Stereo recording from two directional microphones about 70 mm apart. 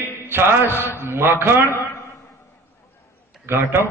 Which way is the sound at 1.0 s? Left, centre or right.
Right.